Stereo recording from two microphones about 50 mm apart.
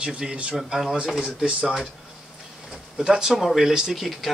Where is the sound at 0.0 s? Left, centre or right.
Centre.